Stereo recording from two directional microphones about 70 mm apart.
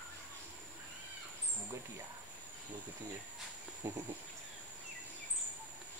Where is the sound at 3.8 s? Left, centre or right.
Right.